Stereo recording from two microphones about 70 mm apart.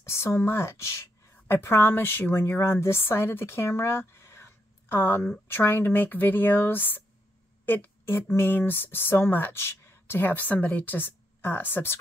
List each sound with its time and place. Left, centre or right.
0.0 s speech: left